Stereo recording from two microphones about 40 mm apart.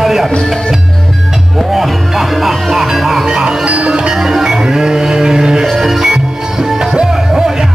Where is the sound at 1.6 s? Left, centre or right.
Centre.